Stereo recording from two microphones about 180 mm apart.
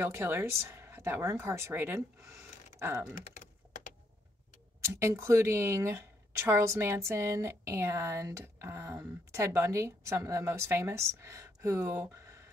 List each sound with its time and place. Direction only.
0.0 s speech: 15° right (ahead or behind)
4.8 s a woman's voice: 15° right (ahead or behind)